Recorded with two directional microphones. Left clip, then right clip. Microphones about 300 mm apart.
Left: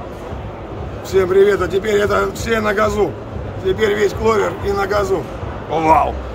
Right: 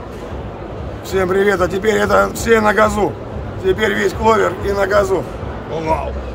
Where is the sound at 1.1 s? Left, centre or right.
Centre.